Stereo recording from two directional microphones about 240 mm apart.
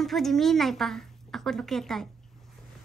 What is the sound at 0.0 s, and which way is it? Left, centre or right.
A woman's voice, centre.